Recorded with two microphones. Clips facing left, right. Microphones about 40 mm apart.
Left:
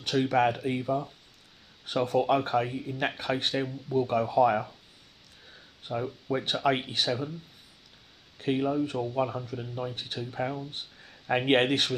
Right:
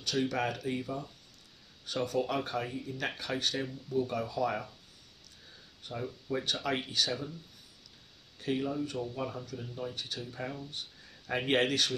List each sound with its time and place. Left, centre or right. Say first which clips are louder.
0.0 s speech: left 7 dB; left
5.9 s speech: left 6 dB; left
8.5 s speech: left 7 dB; left
8.8 s speech: left 7 dB; left